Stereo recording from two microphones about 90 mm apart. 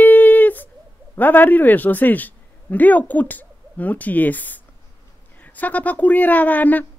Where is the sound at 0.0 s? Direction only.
20° left (ahead or behind).